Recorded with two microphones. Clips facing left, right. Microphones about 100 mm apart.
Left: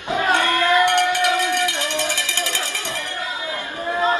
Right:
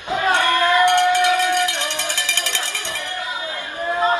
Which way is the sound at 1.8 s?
20° right (ahead or behind).